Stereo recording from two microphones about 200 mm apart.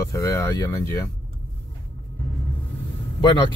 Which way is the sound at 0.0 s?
15° left (ahead or behind).